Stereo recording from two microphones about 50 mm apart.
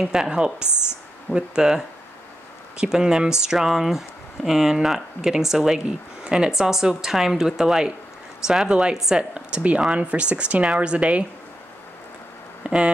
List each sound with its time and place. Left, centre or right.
0.0 s speech: centre
0.7 s speech: left
1.3 s speech: centre
9.3 s speech: right
12.6 s speech: centre